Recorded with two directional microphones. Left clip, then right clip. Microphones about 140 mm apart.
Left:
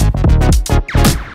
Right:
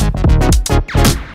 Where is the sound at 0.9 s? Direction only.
25° left (ahead or behind).